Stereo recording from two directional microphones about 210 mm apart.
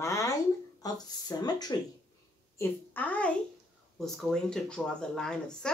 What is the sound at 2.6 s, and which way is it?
A woman's voice, 10° left (ahead or behind).